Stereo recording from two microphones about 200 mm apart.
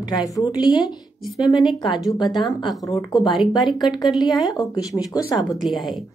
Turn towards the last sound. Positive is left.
turn(degrees=0)  # may be behind; listen again after turning